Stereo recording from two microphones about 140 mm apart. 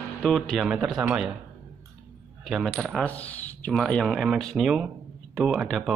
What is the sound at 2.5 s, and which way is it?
Speech, centre (ahead or behind).